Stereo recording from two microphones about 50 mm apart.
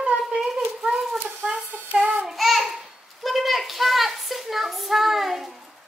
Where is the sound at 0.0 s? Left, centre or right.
Centre.